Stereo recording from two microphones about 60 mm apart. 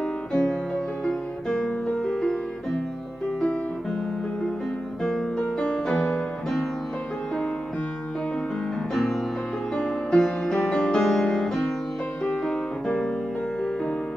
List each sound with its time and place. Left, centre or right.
0.3 s music: centre
5.0 s music: centre
8.9 s music: centre